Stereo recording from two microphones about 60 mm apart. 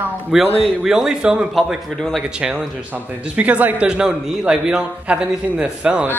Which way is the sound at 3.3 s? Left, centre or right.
Right.